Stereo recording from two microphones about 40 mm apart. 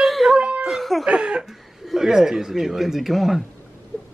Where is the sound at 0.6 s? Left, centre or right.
Centre.